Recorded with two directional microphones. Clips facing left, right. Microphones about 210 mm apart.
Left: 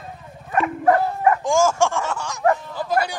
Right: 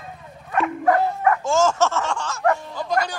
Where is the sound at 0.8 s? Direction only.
25° left (ahead or behind).